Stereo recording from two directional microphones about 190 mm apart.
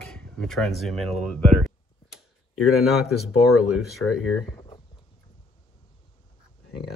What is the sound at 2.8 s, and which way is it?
Speech, centre (ahead or behind).